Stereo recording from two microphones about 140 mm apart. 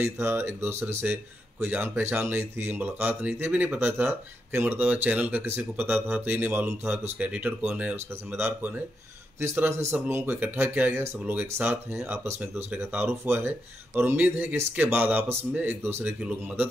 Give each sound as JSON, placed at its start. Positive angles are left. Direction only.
{"t": 0.0, "sound": "speech", "side_deg": -15}